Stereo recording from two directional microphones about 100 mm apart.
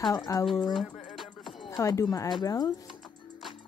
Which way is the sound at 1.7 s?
35° left (ahead or behind).